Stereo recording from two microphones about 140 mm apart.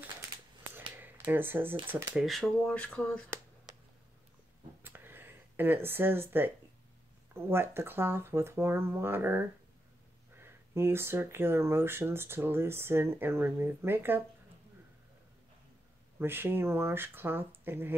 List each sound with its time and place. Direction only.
0.7 s finger snapping: 15° right (ahead or behind)
2.1 s speech: centre (ahead or behind)
4.8 s a sound: 15° right (ahead or behind)
7.3 s speech: 15° right (ahead or behind)
16.2 s speech: 15° right (ahead or behind)